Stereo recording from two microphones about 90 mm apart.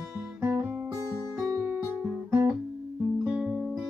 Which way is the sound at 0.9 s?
40° right (ahead or behind).